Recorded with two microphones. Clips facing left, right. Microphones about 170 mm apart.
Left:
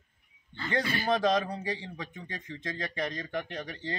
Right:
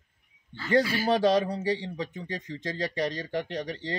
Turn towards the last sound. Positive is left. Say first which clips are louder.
# right 4 dB
turn(degrees=-35)  # may be behind; listen again after turning